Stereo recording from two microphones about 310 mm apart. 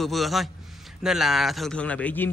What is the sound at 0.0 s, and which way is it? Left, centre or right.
Speech, centre.